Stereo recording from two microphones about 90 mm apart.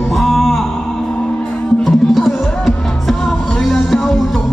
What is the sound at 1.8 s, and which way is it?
Music, centre (ahead or behind).